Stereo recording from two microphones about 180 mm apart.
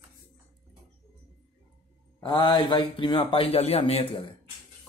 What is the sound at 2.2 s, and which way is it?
Speech, 25° left (ahead or behind).